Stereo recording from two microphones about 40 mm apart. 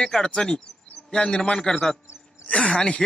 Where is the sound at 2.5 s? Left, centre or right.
Left.